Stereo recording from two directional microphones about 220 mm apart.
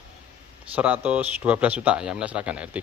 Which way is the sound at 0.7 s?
5° right (ahead or behind).